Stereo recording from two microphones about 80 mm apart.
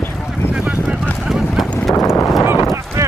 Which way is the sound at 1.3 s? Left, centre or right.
Centre.